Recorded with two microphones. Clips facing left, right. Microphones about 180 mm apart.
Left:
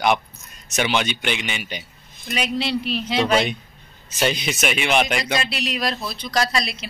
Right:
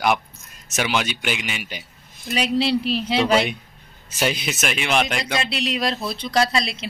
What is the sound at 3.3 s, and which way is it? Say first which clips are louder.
A man's voice: right 1 dB; 5° right (ahead or behind).